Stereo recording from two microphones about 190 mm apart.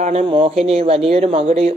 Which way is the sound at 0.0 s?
35° right (ahead or behind).